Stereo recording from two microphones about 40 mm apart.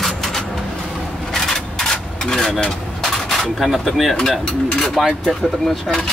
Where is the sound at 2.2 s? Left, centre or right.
Centre.